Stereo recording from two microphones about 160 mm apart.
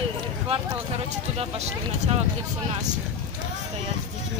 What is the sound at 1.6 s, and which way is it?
Speech, 40° right (ahead or behind).